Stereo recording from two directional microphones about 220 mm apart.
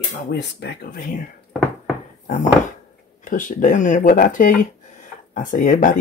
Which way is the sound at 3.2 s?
35° left (ahead or behind).